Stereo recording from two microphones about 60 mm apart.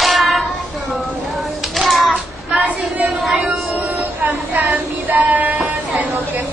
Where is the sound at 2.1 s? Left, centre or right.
Right.